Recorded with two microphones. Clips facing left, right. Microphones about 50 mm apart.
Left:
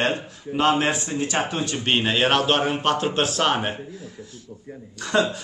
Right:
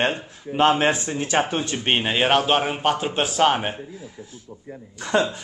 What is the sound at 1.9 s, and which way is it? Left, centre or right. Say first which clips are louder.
A man's voice: even; centre.